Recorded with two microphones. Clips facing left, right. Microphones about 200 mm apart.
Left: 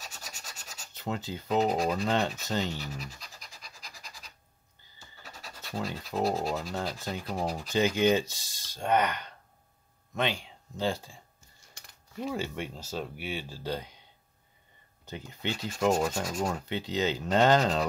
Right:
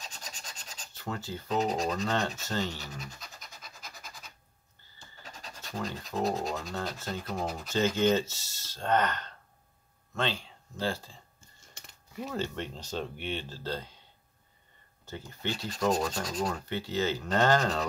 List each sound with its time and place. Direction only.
0.0 s a sound: 10° left (ahead or behind)
0.9 s speech: 20° left (ahead or behind)
3.0 s a sound: centre (ahead or behind)
5.7 s speech: 10° left (ahead or behind)
12.3 s speech: 10° left (ahead or behind)
15.0 s speech: 15° left (ahead or behind)